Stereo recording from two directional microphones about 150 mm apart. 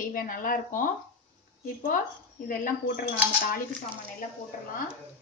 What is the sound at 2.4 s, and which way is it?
Speech, 70° left (ahead or behind).